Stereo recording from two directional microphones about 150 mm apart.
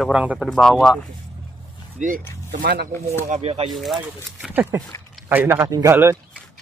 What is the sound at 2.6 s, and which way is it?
Speech, 90° right.